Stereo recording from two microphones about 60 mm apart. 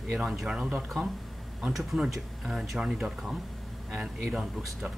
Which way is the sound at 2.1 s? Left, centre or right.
Centre.